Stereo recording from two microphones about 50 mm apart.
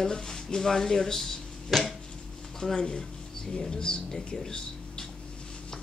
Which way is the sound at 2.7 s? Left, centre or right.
Centre.